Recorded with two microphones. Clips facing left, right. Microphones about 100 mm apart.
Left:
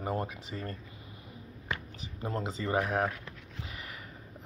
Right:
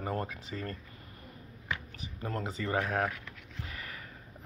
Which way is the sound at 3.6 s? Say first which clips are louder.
Right 1 dB; 20° left (ahead or behind).